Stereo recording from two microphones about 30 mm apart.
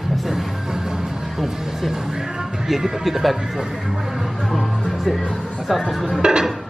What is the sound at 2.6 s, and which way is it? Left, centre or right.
Speech, centre.